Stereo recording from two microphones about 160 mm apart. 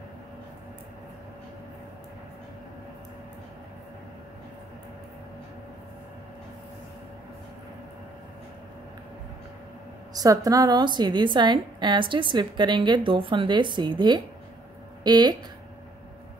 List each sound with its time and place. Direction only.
10.1 s a woman's voice: 20° right (ahead or behind)